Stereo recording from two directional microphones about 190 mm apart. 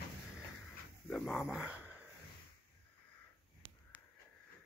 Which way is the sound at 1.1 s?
Centre (ahead or behind).